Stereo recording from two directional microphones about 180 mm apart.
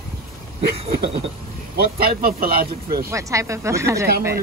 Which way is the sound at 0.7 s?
35° right (ahead or behind).